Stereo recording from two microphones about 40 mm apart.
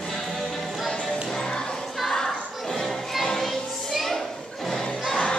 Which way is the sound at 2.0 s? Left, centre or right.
Centre.